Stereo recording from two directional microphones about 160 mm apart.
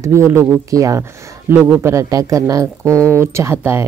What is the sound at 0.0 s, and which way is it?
Speech, 15° right (ahead or behind).